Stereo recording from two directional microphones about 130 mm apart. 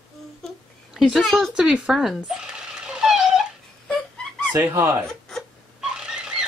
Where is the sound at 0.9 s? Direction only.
Centre (ahead or behind).